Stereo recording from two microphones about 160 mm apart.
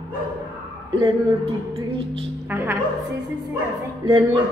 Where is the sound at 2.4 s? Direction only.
15° right (ahead or behind).